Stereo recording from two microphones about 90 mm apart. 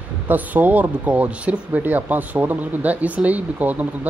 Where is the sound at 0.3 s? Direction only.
20° right (ahead or behind).